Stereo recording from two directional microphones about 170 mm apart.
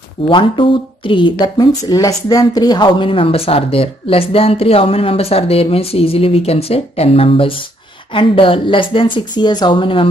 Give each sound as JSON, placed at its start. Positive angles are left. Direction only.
{"t": 0.3, "sound": "a woman's voice", "side_deg": 30}